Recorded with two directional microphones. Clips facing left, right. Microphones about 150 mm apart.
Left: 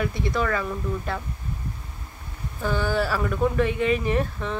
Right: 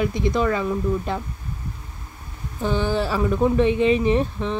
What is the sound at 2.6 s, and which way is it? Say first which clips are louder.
Speech: right 2 dB; 20° right (ahead or behind).